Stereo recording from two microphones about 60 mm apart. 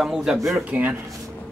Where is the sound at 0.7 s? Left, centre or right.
Right.